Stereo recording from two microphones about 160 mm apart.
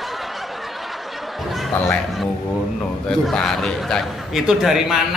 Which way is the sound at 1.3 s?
Centre (ahead or behind).